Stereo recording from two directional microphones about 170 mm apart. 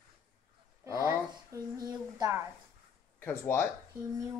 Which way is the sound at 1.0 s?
20° right (ahead or behind).